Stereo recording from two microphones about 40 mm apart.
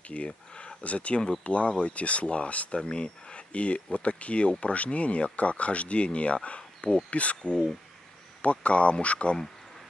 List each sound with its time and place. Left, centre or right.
0.1 s speech: left